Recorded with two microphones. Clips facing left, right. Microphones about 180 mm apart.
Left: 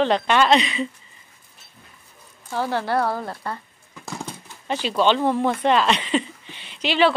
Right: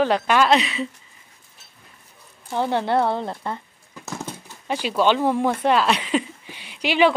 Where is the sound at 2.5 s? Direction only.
20° right (ahead or behind).